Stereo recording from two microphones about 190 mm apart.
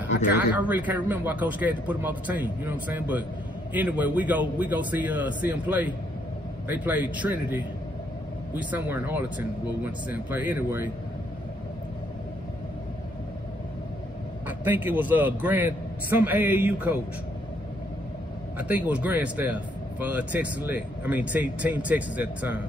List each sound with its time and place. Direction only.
0.1 s speech: 65° left (ahead or behind)
0.6 s speech: 10° right (ahead or behind)
14.6 s speech: 10° right (ahead or behind)
18.6 s speech: 10° right (ahead or behind)